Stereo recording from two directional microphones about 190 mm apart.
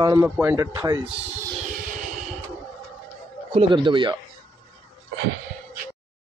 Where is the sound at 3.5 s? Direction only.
25° right (ahead or behind).